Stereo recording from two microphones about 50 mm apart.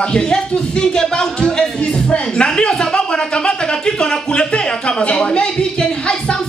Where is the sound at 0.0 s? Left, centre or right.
Centre.